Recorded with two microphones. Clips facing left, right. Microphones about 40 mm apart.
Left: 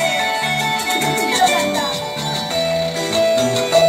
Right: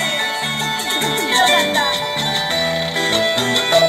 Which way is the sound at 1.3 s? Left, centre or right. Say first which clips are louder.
Right 3 dB; right.